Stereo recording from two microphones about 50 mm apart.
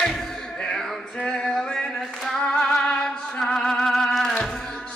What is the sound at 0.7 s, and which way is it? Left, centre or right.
Singing, centre.